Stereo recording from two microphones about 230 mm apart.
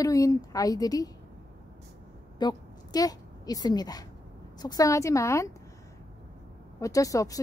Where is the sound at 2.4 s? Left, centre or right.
Centre.